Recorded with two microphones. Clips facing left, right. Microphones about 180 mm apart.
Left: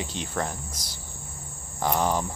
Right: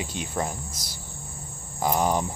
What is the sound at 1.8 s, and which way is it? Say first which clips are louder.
Cricket: right 1 dB; 15° right (ahead or behind).